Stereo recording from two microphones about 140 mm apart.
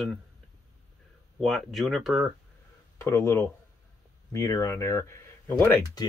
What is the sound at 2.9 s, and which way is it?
Speech, 20° left (ahead or behind).